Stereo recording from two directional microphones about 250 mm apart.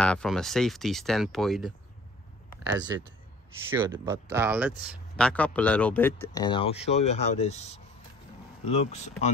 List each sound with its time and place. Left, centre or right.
0.0 s speech: centre
2.7 s speech: centre
4.0 s speech: centre
5.1 s speech: centre; by 9.1 s left